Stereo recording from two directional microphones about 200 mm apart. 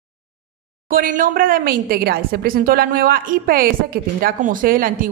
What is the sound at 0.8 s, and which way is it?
A woman's voice, 45° right (ahead or behind).